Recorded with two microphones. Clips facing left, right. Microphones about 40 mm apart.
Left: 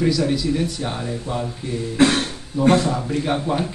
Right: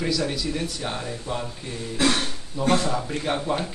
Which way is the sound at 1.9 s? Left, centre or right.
Left.